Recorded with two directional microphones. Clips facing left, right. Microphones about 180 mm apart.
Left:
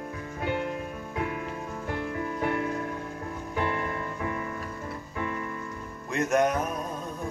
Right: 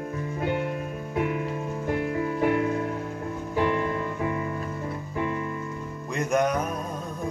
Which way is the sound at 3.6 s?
20° right (ahead or behind).